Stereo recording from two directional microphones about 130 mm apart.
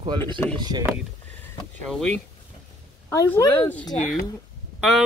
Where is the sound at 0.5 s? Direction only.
35° right (ahead or behind).